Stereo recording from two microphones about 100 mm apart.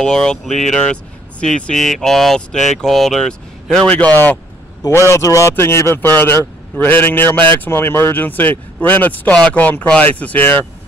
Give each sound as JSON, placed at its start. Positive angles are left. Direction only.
{"t": 0.0, "sound": "speech", "side_deg": 5}
{"t": 3.9, "sound": "speech", "side_deg": 15}
{"t": 5.1, "sound": "speech", "side_deg": 30}